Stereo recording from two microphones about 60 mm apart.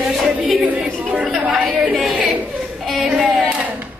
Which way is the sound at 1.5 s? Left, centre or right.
Centre.